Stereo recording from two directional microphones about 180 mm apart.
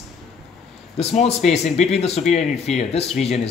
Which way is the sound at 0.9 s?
35° left (ahead or behind).